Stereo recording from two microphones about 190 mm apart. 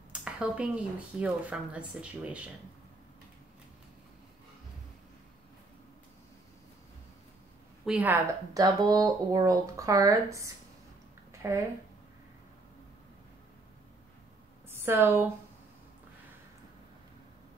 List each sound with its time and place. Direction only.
0.1 s speech: 5° right (ahead or behind)
7.8 s speech: 5° right (ahead or behind)
14.7 s a woman's voice: 10° right (ahead or behind)